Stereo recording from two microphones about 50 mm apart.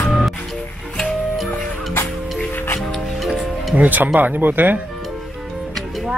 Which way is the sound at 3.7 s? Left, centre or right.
Right.